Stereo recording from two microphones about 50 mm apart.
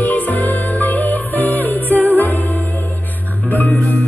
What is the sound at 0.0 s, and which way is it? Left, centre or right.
Music, left.